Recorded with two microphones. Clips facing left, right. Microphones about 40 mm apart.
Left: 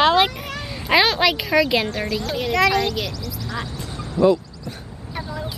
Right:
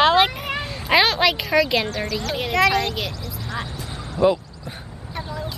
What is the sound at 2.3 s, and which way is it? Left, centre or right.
Speech, centre.